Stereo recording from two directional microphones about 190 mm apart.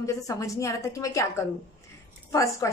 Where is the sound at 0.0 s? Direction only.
15° left (ahead or behind).